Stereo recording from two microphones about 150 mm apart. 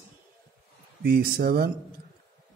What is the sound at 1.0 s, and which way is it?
Speech, 90° right.